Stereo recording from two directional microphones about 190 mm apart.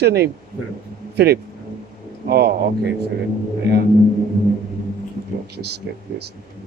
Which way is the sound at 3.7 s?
60° right (ahead or behind).